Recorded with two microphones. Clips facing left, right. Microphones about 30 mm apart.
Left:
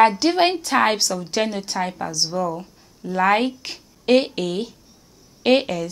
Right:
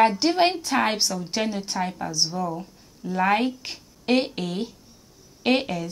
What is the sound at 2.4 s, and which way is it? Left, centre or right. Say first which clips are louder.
Speech: left 4 dB; left.